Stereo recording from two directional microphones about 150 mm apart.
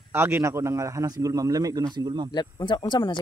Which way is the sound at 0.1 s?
15° right (ahead or behind).